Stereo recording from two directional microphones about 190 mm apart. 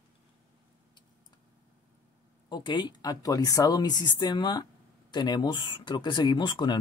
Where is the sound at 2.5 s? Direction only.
25° left (ahead or behind).